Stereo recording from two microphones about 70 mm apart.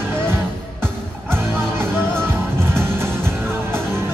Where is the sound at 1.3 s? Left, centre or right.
Right.